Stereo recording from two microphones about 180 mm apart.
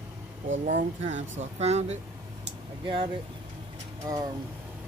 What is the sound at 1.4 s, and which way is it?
Speech, 40° right (ahead or behind).